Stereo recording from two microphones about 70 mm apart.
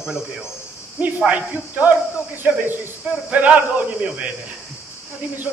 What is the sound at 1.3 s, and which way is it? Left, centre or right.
Speech, right.